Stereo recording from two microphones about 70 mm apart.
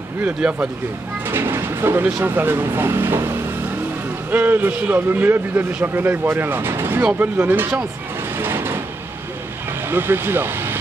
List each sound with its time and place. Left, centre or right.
0.4 s speech: centre
1.3 s a man's voice: right
4.3 s a man's voice: right
8.4 s a sound: right
9.8 s speech: right